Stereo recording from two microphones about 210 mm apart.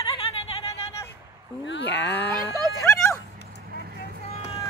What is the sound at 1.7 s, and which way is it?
Speech, 55° left (ahead or behind).